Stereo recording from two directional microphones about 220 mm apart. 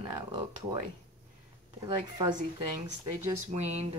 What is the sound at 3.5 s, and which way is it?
Speech, 30° right (ahead or behind).